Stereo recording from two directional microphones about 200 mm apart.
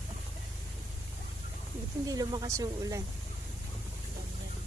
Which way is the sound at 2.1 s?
20° right (ahead or behind).